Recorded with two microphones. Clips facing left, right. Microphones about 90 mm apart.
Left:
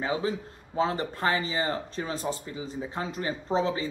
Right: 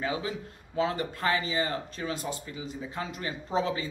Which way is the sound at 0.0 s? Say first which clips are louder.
Left 3 dB; 30° left (ahead or behind).